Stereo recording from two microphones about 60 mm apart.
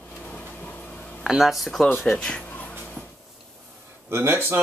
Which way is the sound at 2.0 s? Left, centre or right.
Centre.